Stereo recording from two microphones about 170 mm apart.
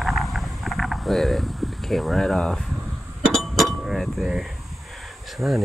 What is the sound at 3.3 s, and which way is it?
Chink, centre (ahead or behind).